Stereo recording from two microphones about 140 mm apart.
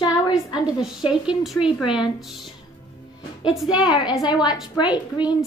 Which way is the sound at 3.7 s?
30° left (ahead or behind).